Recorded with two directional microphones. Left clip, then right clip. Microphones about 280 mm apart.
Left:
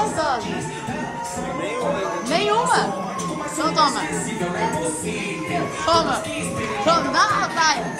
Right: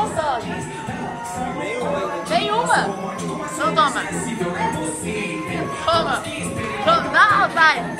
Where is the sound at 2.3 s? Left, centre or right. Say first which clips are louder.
Right 1 dB; left.